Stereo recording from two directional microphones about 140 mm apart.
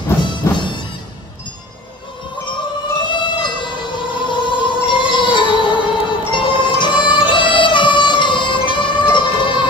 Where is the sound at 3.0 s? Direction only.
35° left (ahead or behind).